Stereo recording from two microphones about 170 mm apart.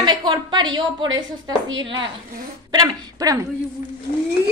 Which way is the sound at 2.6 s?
20° right (ahead or behind).